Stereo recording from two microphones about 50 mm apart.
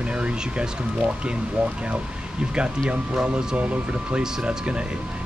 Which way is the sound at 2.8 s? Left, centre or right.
Right.